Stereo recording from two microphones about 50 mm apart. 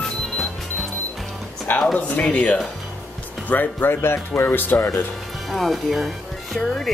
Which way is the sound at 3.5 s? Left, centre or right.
Left.